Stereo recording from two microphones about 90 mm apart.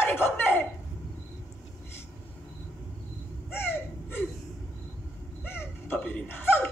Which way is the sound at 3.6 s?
20° left (ahead or behind).